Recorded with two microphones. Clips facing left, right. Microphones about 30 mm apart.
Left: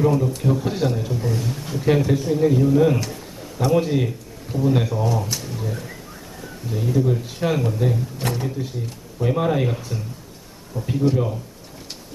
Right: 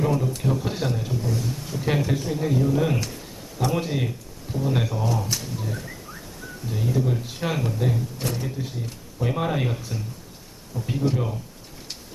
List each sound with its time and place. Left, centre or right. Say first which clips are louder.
0.0 s speech: left 4 dB; centre
1.2 s a man's voice: left 3 dB; left
1.8 s speech: left 6 dB; centre
4.5 s speech: left 6 dB; centre
4.7 s speech: left 4 dB; centre
5.3 s a sound: left 2 dB; centre
6.7 s speech: left 4 dB; centre
10.9 s speech: left 5 dB; centre